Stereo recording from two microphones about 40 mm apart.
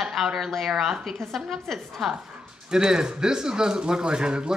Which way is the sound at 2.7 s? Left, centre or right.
Centre.